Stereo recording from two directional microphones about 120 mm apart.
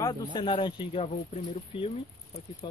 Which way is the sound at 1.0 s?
55° left (ahead or behind).